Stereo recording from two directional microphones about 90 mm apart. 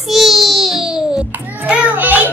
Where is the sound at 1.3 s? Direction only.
20° right (ahead or behind).